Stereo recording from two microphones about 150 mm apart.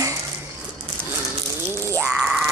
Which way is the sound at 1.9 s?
5° right (ahead or behind).